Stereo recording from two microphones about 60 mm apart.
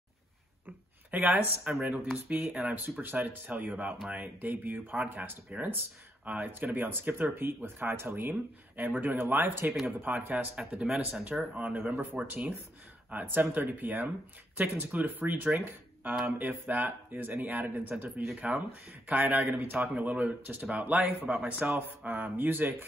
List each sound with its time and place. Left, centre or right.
1.1 s speech: right
1.6 s speech: centre
2.4 s speech: centre
2.7 s speech: right
10.8 s speech: centre; by 22.8 s right